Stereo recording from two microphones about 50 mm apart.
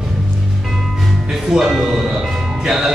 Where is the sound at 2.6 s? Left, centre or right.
Centre.